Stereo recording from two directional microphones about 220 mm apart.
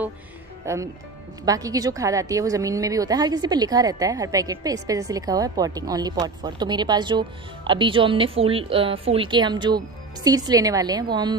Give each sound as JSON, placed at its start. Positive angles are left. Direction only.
{"t": 0.7, "sound": "a woman's voice", "side_deg": -10}